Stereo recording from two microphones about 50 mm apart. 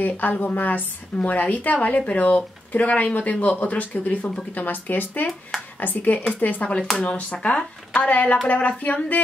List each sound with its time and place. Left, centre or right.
0.0 s speech: left
6.4 s speech: left